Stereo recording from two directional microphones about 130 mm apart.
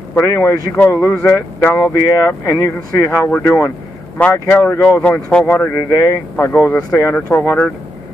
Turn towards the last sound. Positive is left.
turn(degrees=15)  # may be behind; listen again after turning